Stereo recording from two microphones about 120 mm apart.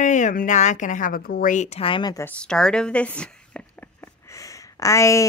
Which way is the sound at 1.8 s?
45° left (ahead or behind).